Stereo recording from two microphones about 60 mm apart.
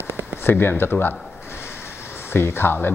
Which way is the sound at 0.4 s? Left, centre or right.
Left.